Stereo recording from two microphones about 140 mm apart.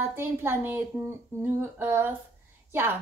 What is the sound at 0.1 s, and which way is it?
A woman's voice, 15° right (ahead or behind).